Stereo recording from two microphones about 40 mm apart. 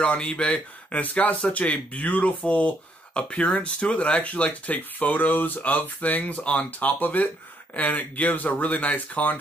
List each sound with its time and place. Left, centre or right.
0.0 s speech: left
6.9 s speech: left